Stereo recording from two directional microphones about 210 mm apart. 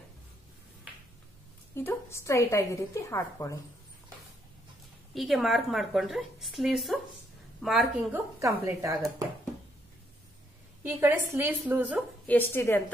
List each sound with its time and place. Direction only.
1.8 s a woman's voice: 10° left (ahead or behind)
5.1 s a woman's voice: centre (ahead or behind)
8.4 s a woman's voice: 15° right (ahead or behind)
10.8 s a woman's voice: 10° right (ahead or behind)
12.3 s a woman's voice: 10° left (ahead or behind)